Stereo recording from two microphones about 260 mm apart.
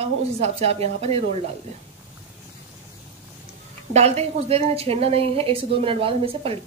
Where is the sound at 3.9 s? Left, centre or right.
Right.